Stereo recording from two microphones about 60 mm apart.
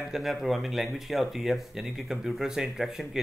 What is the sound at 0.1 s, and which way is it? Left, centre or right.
Speech, centre.